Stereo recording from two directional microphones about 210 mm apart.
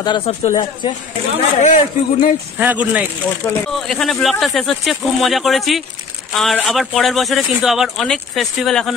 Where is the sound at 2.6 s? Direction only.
5° right (ahead or behind).